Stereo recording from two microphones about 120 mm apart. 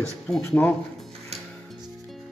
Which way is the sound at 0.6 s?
15° left (ahead or behind).